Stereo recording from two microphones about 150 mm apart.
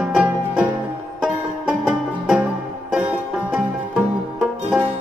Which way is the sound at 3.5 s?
10° right (ahead or behind).